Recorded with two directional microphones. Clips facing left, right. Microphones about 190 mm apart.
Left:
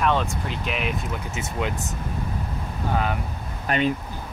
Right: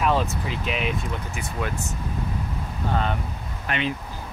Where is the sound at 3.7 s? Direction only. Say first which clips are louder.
Left 4 dB; 45° left (ahead or behind).